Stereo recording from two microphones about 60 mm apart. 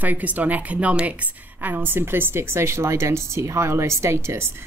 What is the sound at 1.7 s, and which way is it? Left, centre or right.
Speech, right.